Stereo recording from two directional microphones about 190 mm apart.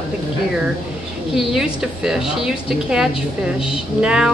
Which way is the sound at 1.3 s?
5° right (ahead or behind).